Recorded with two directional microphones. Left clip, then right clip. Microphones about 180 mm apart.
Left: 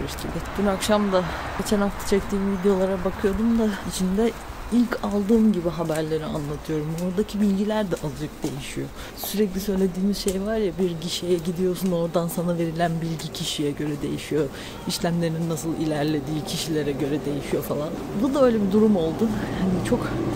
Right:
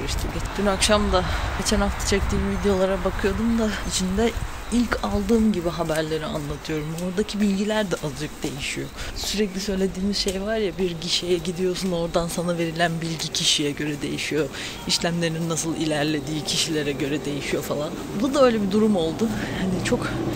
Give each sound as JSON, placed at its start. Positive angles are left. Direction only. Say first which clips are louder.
{"t": 0.7, "sound": "speech", "louder": "right 2 dB", "side_deg": 10}
{"t": 4.7, "sound": "speech", "louder": "even", "side_deg": 15}
{"t": 9.3, "sound": "speech", "louder": "left 1 dB", "side_deg": 20}